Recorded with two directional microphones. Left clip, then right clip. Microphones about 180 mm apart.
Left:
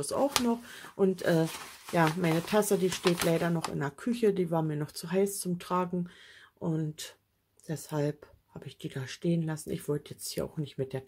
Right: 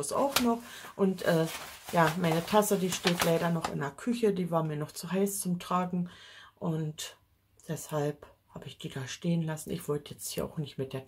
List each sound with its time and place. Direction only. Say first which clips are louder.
0.0 s speech: even; 30° left (ahead or behind)